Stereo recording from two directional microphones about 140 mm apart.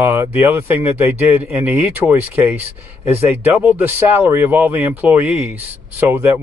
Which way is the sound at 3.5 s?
10° right (ahead or behind).